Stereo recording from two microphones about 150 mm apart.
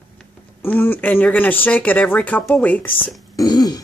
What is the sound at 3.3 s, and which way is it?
Speech, 25° left (ahead or behind).